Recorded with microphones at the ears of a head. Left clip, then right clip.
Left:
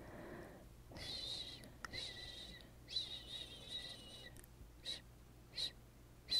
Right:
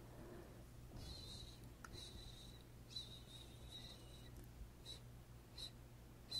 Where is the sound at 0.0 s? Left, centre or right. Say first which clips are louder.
Left 6 dB; left.